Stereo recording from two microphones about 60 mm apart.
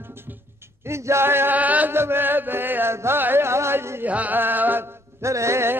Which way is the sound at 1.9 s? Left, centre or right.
Right.